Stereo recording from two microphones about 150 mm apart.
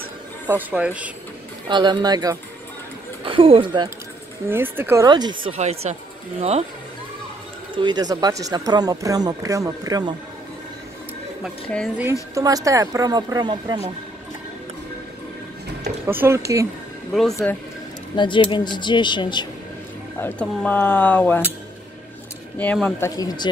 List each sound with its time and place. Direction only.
0.5 s speech: 10° right (ahead or behind)
1.7 s speech: 30° right (ahead or behind)
4.5 s speech: 15° right (ahead or behind)
5.0 s speech: 30° right (ahead or behind)
5.5 s speech: 45° right (ahead or behind)
7.7 s speech: 30° right (ahead or behind)
12.0 s speech: 20° right (ahead or behind)
16.1 s speech: 15° right (ahead or behind)
17.1 s speech: centre (ahead or behind)
18.1 s speech: 30° left (ahead or behind)
20.2 s speech: 10° left (ahead or behind)
22.6 s speech: 5° left (ahead or behind)
22.9 s speech: 25° left (ahead or behind)